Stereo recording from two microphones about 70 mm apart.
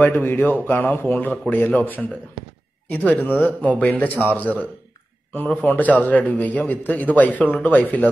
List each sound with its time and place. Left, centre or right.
0.1 s a man's voice: left